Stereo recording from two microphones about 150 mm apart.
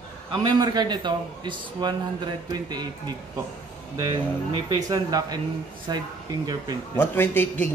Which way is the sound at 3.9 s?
30° right (ahead or behind).